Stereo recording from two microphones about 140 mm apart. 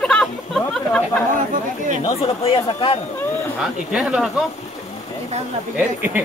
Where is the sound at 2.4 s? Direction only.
40° left (ahead or behind).